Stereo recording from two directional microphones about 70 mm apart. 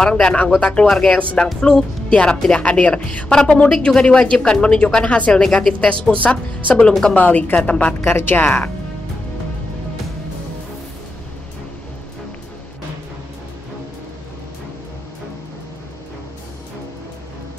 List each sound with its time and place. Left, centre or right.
0.0 s a woman's voice: centre
0.8 s a woman's voice: centre
1.1 s a woman's voice: centre
5.4 s a woman's voice: centre
6.9 s a woman's voice: centre
7.2 s a woman's voice: left
8.0 s a woman's voice: left